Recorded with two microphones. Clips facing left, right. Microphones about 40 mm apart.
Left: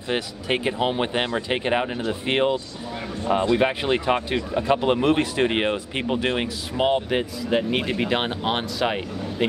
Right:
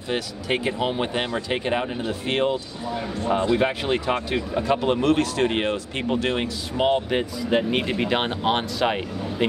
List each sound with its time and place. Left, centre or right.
0.1 s speech: centre
3.5 s speech: centre